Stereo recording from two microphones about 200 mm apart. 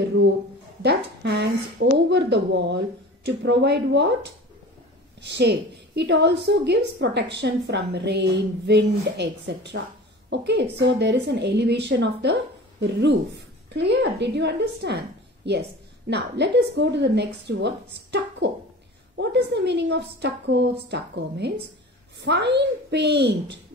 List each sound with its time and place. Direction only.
0.8 s a woman's voice: 55° right (ahead or behind)
5.2 s a woman's voice: 60° right (ahead or behind)
13.7 s a woman's voice: 60° right (ahead or behind)